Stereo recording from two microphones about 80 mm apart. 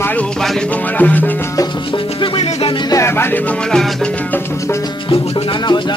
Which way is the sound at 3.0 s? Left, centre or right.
Left.